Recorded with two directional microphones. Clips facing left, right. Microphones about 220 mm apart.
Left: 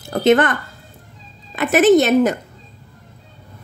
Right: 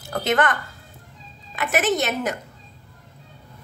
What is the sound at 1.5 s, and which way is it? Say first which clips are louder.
Speech: left 10 dB; 30° left (ahead or behind).